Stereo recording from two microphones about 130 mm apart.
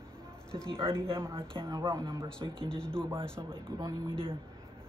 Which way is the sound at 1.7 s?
30° right (ahead or behind).